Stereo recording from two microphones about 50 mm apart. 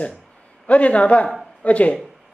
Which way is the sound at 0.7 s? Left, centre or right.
Left.